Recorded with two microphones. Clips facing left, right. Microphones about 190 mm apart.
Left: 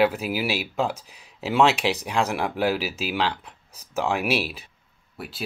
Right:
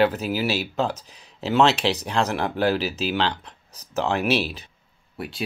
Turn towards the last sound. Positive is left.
turn(degrees=0)  # may be behind; listen again after turning